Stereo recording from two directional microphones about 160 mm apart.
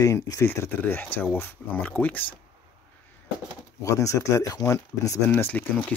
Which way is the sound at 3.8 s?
20° left (ahead or behind).